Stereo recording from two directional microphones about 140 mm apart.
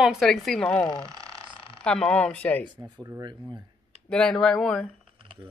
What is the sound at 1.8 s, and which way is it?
Speech, 5° left (ahead or behind).